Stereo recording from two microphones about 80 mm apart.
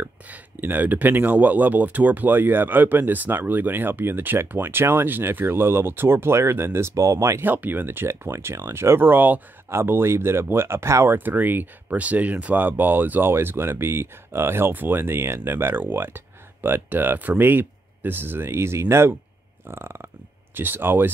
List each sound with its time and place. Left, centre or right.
0.0 s speech: right
11.1 s speech: right
19.7 s burping: right
20.5 s speech: right